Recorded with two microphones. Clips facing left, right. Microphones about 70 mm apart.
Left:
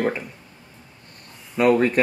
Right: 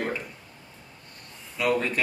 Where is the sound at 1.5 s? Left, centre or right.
Left.